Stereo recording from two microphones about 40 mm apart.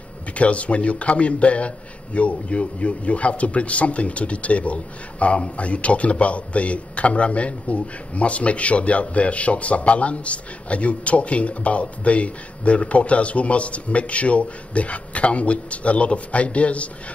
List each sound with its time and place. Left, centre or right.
0.3 s speech: left